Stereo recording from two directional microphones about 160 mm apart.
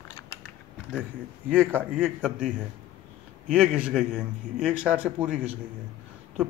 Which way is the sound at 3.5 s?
5° right (ahead or behind).